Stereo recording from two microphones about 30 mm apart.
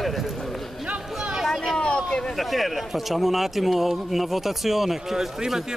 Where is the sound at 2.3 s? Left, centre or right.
Centre.